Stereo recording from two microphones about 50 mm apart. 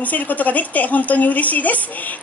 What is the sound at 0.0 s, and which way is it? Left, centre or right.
A woman's voice, left.